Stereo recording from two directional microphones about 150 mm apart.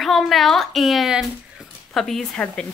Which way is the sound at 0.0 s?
Centre (ahead or behind).